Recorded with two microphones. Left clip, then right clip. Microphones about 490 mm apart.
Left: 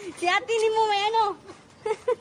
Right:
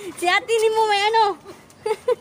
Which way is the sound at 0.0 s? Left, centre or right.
Left.